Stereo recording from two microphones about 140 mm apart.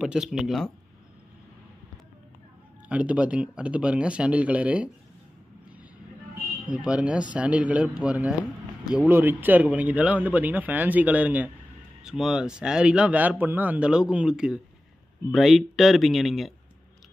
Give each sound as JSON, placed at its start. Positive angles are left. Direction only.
{"t": 0.0, "sound": "a man's voice", "side_deg": -5}
{"t": 2.9, "sound": "speech", "side_deg": -10}
{"t": 6.7, "sound": "a man's voice", "side_deg": -10}